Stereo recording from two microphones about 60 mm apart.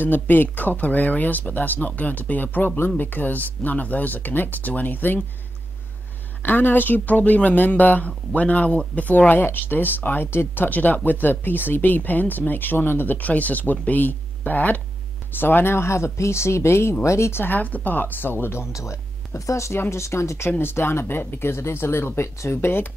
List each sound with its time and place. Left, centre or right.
0.0 s speech: left
6.4 s speech: left
17.4 s speech: left
18.7 s speech: left